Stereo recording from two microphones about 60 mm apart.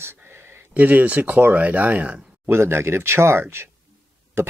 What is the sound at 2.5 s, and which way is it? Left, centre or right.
Speech, right.